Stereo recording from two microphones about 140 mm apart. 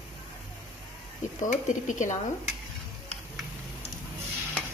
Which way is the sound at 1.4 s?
65° left (ahead or behind).